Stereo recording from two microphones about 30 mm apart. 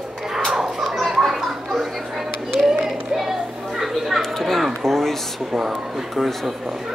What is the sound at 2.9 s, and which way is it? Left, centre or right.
Children playing, centre.